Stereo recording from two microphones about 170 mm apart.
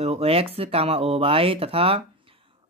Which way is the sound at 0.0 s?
35° right (ahead or behind).